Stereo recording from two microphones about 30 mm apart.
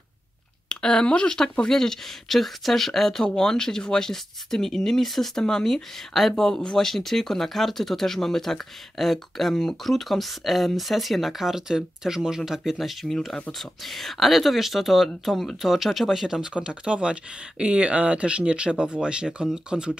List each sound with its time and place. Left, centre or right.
0.7 s a sound: left
1.0 s speech: left
1.7 s speech: centre
3.3 s speech: centre
6.3 s speech: centre
11.4 s speech: centre
13.3 s speech: centre
16.6 s speech: right